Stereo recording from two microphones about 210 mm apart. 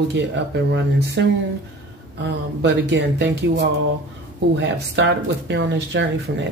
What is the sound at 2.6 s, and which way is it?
Speech, 55° right (ahead or behind).